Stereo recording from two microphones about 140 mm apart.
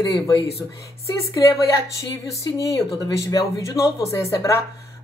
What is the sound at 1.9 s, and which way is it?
Speech, 25° left (ahead or behind).